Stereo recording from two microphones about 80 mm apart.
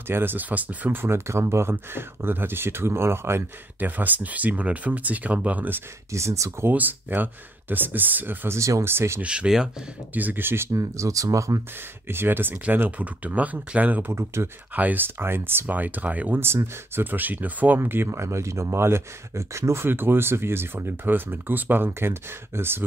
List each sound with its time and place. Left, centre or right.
0.1 s speech: right
6.1 s speech: right
6.7 s speech: right
8.5 s speech: right
9.2 s speech: centre
10.1 s speech: right
12.1 s speech: right
14.1 s speech: right
14.8 s speech: right